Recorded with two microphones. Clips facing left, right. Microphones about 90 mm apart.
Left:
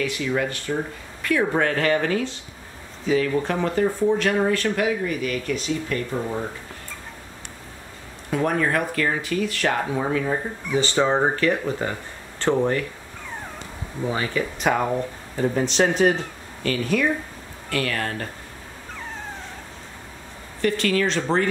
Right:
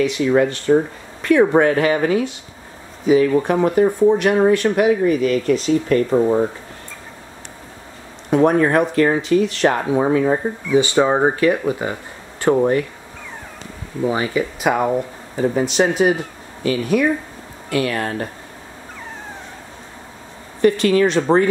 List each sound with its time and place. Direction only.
0.2 s speech: 35° right (ahead or behind)
1.6 s speech: 15° right (ahead or behind)
3.3 s speech: 20° right (ahead or behind)
5.9 s speech: 40° right (ahead or behind)
8.3 s speech: 20° right (ahead or behind)
10.7 s speech: 15° right (ahead or behind)
14.0 s speech: 15° right (ahead or behind)
20.6 s speech: 20° right (ahead or behind)